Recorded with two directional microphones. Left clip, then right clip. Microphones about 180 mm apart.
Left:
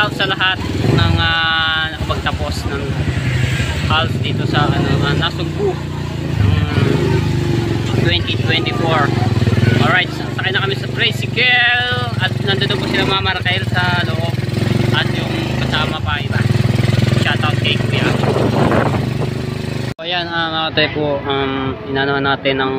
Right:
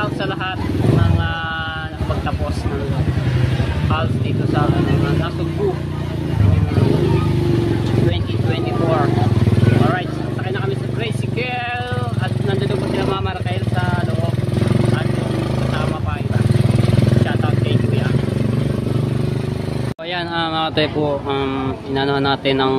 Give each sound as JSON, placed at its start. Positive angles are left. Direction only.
{"t": 0.0, "sound": "vehicle", "side_deg": 5}
{"t": 1.2, "sound": "music", "side_deg": 5}
{"t": 8.1, "sound": "speech", "side_deg": 5}
{"t": 10.5, "sound": "speech", "side_deg": -5}
{"t": 17.3, "sound": "vehicle", "side_deg": -20}
{"t": 20.3, "sound": "speech", "side_deg": -20}